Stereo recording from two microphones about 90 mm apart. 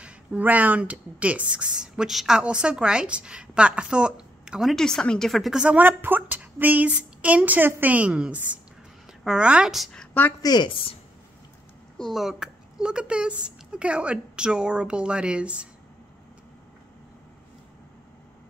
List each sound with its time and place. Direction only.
0.0 s speech: 15° right (ahead or behind)
5.8 s a woman's voice: 20° right (ahead or behind)
10.4 s a woman's voice: 50° left (ahead or behind)
10.7 s a woman's voice: 90° left
12.0 s speech: 5° right (ahead or behind)